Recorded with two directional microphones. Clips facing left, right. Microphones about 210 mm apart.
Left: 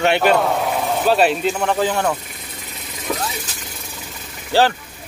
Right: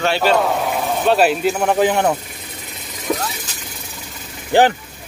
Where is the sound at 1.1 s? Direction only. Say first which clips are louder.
Right 2 dB; centre (ahead or behind); by 2.2 s 20° right (ahead or behind).